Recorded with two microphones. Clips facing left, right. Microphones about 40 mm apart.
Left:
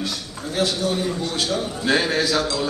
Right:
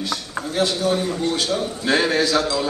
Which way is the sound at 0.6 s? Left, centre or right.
Centre.